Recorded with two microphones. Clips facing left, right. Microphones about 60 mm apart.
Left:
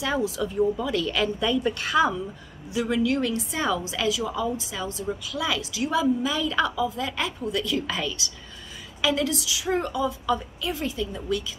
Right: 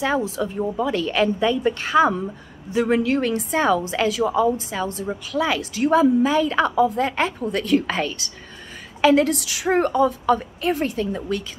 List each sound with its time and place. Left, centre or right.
0.0 s a woman's voice: right
9.4 s a woman's voice: right